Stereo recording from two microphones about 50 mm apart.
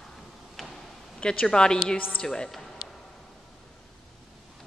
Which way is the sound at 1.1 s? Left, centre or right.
Left.